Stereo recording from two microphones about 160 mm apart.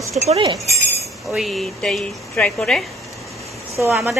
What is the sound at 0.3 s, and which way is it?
Speech, 30° right (ahead or behind).